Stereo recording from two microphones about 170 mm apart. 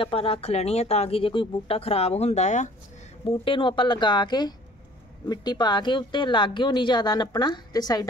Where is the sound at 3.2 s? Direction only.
30° left (ahead or behind).